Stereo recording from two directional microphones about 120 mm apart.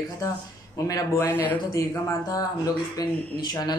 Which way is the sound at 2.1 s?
30° left (ahead or behind).